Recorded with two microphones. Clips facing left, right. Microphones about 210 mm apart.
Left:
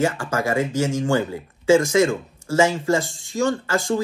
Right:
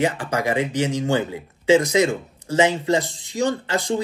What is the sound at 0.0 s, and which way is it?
Speech, 15° right (ahead or behind).